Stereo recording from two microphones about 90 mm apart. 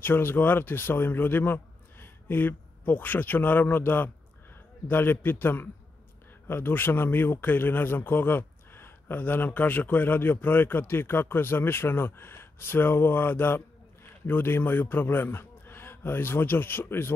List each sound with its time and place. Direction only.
0.0 s a man's voice: 25° left (ahead or behind)